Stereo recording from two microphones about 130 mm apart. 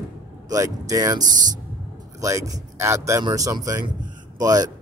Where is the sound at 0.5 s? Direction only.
25° right (ahead or behind).